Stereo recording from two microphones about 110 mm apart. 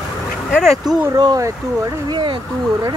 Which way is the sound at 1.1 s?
35° right (ahead or behind).